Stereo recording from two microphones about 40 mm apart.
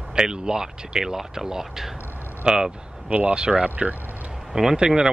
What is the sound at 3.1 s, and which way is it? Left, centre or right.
Speech, right.